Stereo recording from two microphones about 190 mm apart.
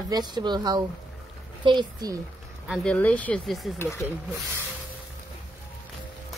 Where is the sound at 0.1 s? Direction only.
20° right (ahead or behind).